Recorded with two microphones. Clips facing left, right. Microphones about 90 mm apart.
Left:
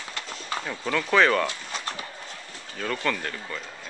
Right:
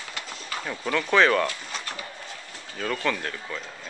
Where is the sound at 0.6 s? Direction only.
Centre (ahead or behind).